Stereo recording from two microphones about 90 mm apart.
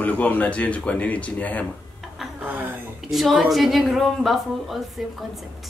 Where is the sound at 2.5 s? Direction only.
15° right (ahead or behind).